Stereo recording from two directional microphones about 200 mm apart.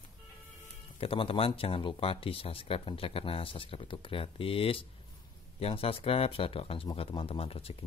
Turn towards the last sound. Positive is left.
turn(degrees=30)  # may be behind; listen again after turning